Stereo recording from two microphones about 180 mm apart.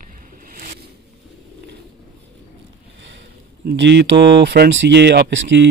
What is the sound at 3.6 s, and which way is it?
Speech, 75° right (ahead or behind).